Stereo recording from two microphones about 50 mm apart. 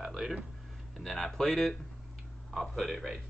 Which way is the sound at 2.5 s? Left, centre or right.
Centre.